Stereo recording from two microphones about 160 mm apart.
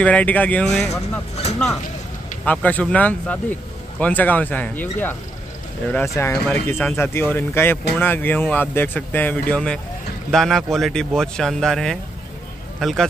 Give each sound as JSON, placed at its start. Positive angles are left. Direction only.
{"t": 0.0, "sound": "speech", "side_deg": 10}
{"t": 1.3, "sound": "speech", "side_deg": 40}
{"t": 2.4, "sound": "speech", "side_deg": 10}